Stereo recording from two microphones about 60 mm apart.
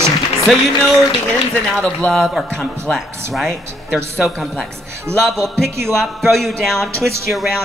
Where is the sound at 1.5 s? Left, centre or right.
Centre.